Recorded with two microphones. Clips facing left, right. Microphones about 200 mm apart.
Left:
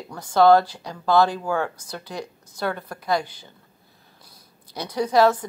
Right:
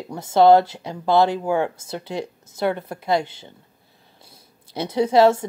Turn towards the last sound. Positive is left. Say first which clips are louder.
# right 3 dB
turn(degrees=-25)  # may be behind; listen again after turning